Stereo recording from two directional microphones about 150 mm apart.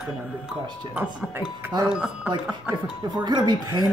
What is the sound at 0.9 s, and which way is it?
A woman's voice, 10° right (ahead or behind).